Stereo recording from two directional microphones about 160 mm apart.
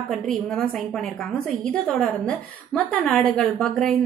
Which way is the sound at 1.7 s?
5° left (ahead or behind).